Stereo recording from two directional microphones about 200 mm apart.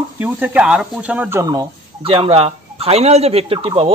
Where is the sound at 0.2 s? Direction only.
10° right (ahead or behind).